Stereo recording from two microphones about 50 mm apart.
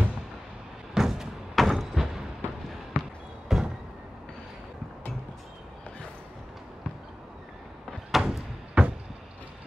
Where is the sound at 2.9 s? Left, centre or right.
Left.